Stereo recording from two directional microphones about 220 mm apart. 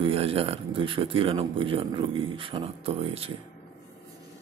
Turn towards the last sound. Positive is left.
turn(degrees=-25)  # may be behind; listen again after turning